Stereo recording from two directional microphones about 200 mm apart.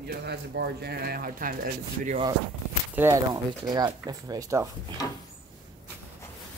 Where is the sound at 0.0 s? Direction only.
55° right (ahead or behind).